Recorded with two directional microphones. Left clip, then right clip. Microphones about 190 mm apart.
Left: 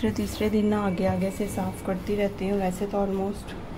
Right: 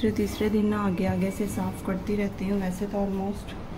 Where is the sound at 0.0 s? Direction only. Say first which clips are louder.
Right 1 dB; 10° left (ahead or behind).